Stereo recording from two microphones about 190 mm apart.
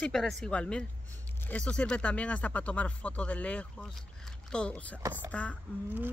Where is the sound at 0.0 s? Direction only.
5° left (ahead or behind).